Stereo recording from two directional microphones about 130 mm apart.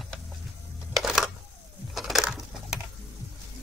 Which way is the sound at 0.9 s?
Centre (ahead or behind).